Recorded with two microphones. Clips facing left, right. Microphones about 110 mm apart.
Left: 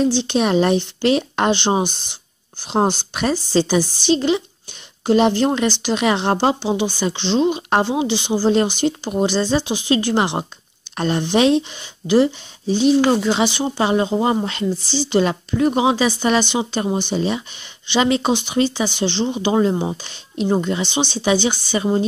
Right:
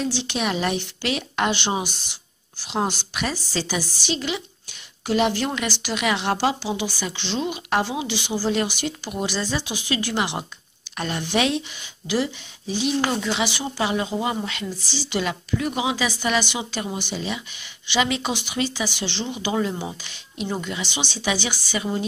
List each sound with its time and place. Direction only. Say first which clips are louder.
0.0 s a woman's voice: left 8 dB; 35° left (ahead or behind)